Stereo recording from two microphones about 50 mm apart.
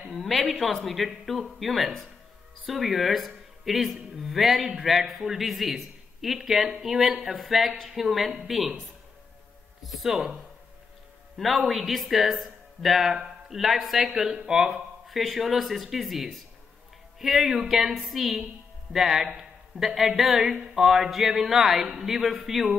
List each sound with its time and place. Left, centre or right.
0.1 s a woman's voice: centre
9.8 s speech: centre
14.4 s speech: centre
15.0 s a woman's voice: centre